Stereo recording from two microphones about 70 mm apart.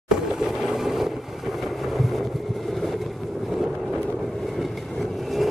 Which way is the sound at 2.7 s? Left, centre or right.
Centre.